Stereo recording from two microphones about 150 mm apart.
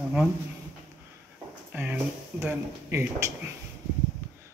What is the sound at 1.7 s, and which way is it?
Speech, 10° right (ahead or behind).